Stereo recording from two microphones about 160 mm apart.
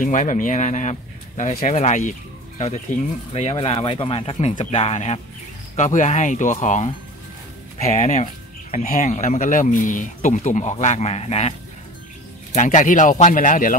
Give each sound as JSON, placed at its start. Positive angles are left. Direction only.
{"t": 0.0, "sound": "speech", "side_deg": 55}
{"t": 12.5, "sound": "speech", "side_deg": 50}